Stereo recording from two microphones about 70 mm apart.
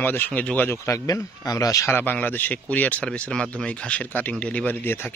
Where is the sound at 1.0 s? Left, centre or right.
Left.